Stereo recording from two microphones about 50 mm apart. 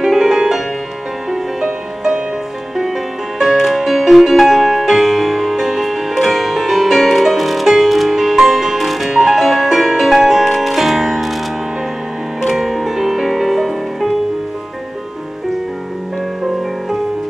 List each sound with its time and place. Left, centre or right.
0.0 s music: centre
3.3 s music: centre
12.4 s music: centre